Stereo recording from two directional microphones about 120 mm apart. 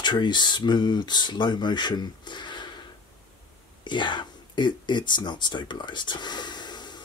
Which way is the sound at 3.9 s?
40° left (ahead or behind).